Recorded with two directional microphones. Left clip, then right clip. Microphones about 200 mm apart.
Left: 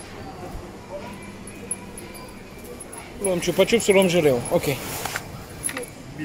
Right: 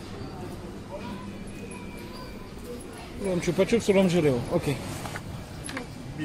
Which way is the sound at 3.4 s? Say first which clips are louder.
Left 5 dB; 20° left (ahead or behind).